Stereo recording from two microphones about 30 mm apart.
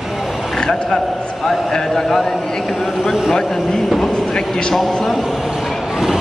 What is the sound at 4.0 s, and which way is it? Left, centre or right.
Speech, centre.